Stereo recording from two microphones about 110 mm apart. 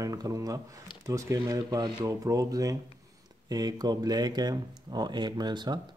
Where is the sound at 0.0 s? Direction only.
30° right (ahead or behind).